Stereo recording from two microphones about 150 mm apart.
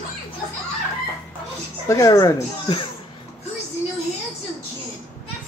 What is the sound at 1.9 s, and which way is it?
Speech, 20° left (ahead or behind).